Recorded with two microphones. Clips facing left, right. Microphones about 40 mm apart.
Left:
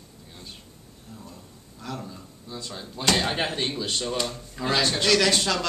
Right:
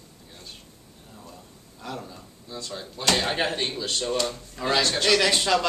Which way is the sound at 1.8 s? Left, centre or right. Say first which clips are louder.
Even; centre.